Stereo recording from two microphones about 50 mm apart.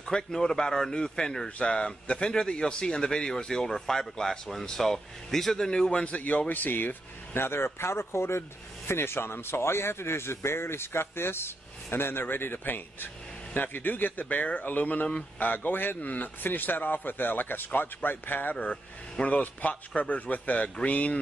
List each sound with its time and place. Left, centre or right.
0.0 s a man's voice: centre; by 18.6 s left
18.6 s a man's voice: left